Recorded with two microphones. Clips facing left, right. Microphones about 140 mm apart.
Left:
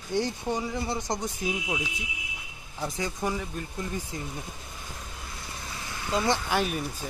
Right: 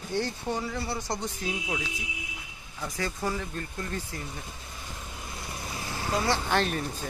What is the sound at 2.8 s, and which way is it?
Speech, 20° left (ahead or behind).